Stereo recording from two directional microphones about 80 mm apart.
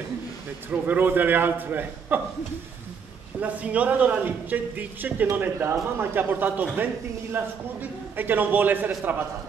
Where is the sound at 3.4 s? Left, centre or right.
Centre.